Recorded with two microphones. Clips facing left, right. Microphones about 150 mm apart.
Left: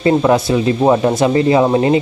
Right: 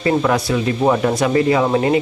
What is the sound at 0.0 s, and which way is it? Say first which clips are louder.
Speech: left 4 dB; 25° left (ahead or behind).